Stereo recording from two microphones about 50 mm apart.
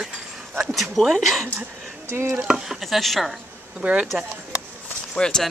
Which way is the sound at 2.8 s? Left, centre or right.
Centre.